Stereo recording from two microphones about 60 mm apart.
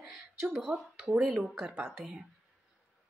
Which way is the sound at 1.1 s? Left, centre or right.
Centre.